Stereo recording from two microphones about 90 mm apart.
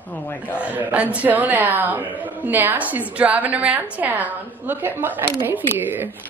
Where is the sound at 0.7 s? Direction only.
15° right (ahead or behind).